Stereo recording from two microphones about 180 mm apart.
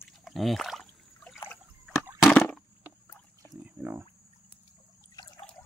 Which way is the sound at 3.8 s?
10° right (ahead or behind).